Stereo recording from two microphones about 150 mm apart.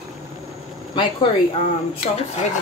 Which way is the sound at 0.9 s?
35° left (ahead or behind).